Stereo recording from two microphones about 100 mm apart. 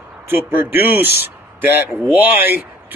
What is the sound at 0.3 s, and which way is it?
A man's voice, 20° right (ahead or behind).